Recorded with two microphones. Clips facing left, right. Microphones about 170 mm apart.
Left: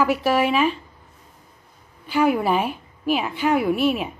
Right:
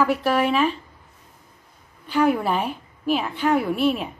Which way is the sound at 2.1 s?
5° left (ahead or behind).